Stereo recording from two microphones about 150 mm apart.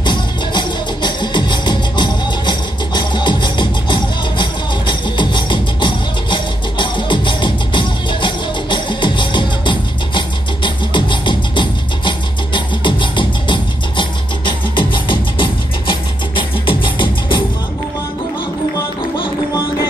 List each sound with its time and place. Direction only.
0.0 s music: 30° left (ahead or behind)